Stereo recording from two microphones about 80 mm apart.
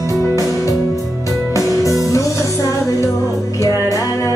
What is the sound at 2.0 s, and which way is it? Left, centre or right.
Music, left.